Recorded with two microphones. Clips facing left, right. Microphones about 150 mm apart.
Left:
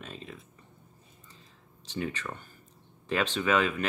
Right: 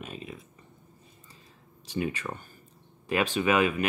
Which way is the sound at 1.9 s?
10° right (ahead or behind).